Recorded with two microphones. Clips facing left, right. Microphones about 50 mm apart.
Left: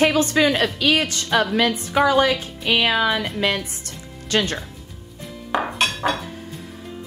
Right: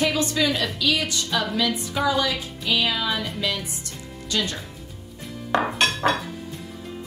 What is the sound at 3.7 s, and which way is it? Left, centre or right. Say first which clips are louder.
Music: even; left.